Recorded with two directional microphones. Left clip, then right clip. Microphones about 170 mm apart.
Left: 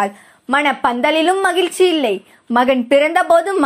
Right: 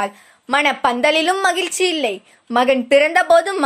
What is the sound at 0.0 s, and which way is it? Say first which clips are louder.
A woman's voice: left 4 dB; 10° right (ahead or behind).